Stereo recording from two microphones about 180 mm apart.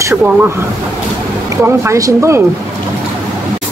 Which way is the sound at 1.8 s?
15° right (ahead or behind).